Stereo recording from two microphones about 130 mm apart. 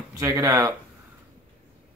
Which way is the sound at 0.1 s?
25° right (ahead or behind).